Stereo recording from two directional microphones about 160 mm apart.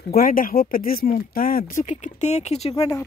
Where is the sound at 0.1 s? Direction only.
60° left (ahead or behind); by 2.7 s 40° left (ahead or behind).